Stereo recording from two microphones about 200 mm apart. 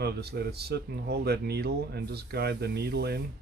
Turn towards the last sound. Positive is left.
turn(degrees=-55)  # may be behind; listen again after turning